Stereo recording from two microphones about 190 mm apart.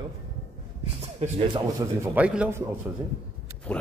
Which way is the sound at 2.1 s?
5° right (ahead or behind).